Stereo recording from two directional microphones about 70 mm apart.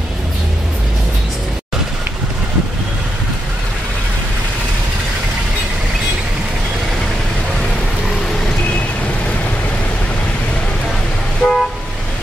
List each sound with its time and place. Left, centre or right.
11.4 s vehicle: centre